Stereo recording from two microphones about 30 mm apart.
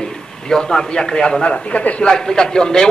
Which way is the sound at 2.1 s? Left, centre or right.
Left.